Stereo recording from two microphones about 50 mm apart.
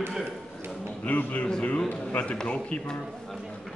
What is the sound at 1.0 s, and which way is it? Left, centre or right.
A man's voice, left.